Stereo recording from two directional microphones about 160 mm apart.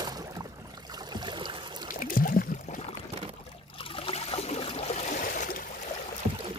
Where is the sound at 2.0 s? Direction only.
60° left (ahead or behind); by 2.9 s 45° left (ahead or behind).